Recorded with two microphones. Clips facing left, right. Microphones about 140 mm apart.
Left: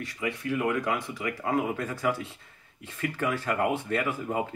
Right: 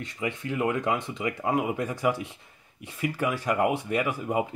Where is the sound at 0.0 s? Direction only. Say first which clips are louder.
Even; 25° right (ahead or behind).